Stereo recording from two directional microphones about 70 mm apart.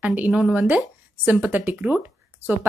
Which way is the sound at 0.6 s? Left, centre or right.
Centre.